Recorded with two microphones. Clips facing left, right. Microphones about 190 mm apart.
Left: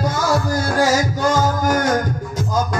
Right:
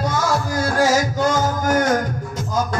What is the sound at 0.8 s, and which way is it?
Music, 10° left (ahead or behind).